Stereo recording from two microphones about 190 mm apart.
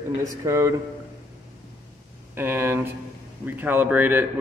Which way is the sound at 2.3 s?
10° right (ahead or behind).